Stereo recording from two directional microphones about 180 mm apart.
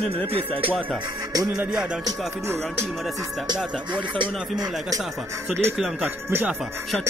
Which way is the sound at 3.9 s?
25° right (ahead or behind).